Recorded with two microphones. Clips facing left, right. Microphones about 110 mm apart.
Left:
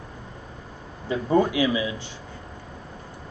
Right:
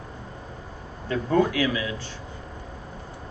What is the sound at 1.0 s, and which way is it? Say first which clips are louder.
Speech: left 1 dB; 15° left (ahead or behind).